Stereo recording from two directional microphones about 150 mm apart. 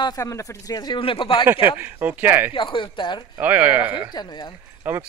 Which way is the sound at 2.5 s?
35° left (ahead or behind).